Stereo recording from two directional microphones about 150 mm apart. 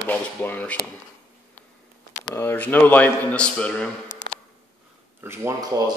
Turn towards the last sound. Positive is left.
turn(degrees=-15)  # may be behind; listen again after turning